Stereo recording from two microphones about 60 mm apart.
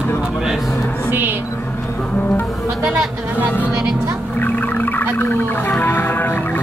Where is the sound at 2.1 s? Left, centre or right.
Left.